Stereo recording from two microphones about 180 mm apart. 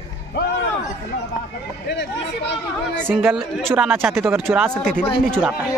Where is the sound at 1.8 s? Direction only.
75° left (ahead or behind).